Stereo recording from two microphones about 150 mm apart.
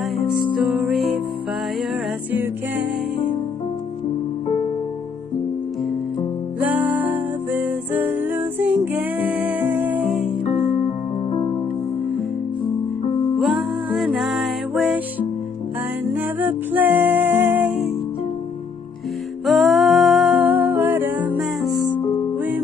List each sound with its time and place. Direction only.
0.7 s music: centre (ahead or behind)
6.6 s music: 10° right (ahead or behind)
10.4 s music: 45° left (ahead or behind)
13.4 s music: centre (ahead or behind)
16.1 s music: 10° right (ahead or behind)
19.4 s music: centre (ahead or behind)
22.0 s music: 40° left (ahead or behind)